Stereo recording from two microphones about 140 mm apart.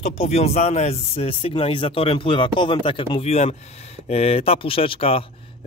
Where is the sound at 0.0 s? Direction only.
50° left (ahead or behind).